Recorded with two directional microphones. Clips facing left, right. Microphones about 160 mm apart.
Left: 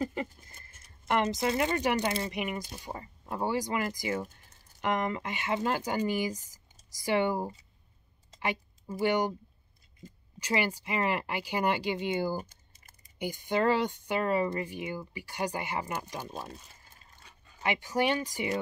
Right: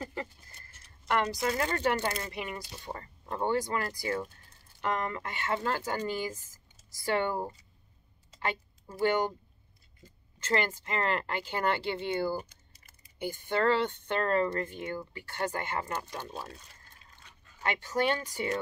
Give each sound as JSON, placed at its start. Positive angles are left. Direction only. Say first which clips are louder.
{"t": 0.0, "sound": "a sound", "louder": "left 5 dB", "side_deg": 20}
{"t": 1.0, "sound": "speech", "louder": "left 1 dB", "side_deg": 20}
{"t": 10.4, "sound": "speech", "louder": "even", "side_deg": 15}
{"t": 12.4, "sound": "typing", "louder": "left 1 dB", "side_deg": 45}
{"t": 13.2, "sound": "speech", "louder": "left 1 dB", "side_deg": 15}